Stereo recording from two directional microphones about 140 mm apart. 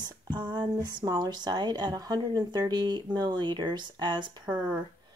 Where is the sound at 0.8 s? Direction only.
30° right (ahead or behind).